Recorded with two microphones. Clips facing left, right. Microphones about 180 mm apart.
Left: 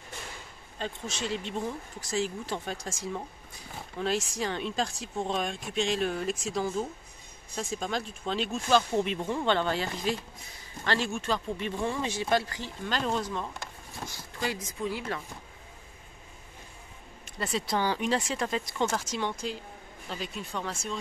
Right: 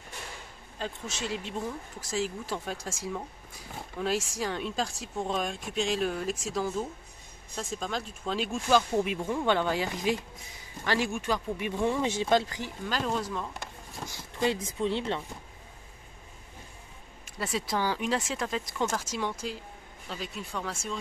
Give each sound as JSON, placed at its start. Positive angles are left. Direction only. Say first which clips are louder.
{"t": 0.7, "sound": "speech", "louder": "left 1 dB", "side_deg": -5}
{"t": 12.8, "sound": "speech", "louder": "left 1 dB", "side_deg": -5}
{"t": 14.4, "sound": "speech", "louder": "right 4 dB", "side_deg": -25}
{"t": 17.4, "sound": "speech", "louder": "left 1 dB", "side_deg": -5}